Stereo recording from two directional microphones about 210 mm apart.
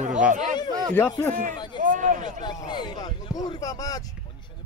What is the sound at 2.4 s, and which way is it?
Speech, 20° left (ahead or behind).